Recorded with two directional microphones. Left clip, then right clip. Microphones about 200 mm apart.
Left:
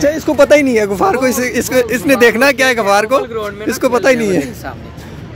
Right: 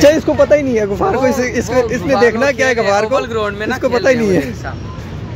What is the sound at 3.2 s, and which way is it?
Speech, 30° right (ahead or behind).